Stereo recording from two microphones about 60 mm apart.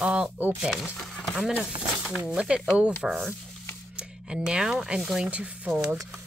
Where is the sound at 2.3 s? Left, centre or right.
Centre.